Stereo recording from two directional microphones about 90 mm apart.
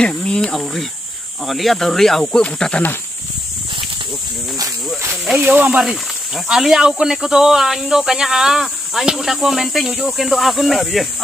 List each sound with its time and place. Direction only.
0.0 s speech: 10° left (ahead or behind)
5.1 s snake: centre (ahead or behind)
5.4 s speech: 20° right (ahead or behind)
5.8 s speech: 5° right (ahead or behind)